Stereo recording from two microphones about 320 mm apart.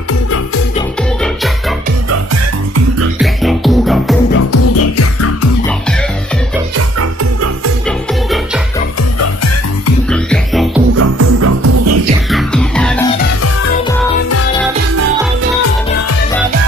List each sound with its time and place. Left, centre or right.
3.2 s music: centre
4.4 s music: left
10.1 s music: centre
11.0 s music: right
12.3 s music: centre